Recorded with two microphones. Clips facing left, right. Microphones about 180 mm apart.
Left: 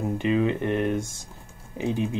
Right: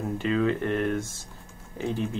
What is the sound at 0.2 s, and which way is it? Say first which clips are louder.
Speech: left 1 dB; 15° left (ahead or behind).